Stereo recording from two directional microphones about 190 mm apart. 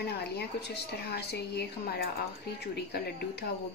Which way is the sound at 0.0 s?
60° left (ahead or behind).